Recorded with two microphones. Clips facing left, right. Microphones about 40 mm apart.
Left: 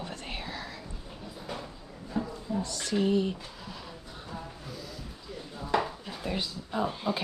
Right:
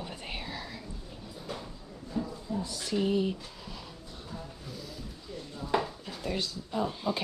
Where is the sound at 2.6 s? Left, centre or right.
Centre.